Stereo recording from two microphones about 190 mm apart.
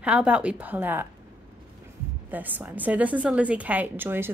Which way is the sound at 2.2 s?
10° right (ahead or behind).